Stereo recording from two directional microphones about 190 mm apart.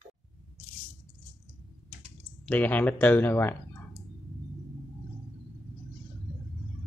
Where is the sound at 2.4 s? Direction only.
10° left (ahead or behind).